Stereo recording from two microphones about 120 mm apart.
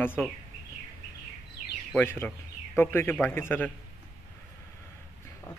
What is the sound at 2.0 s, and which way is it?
A man's voice, 15° left (ahead or behind).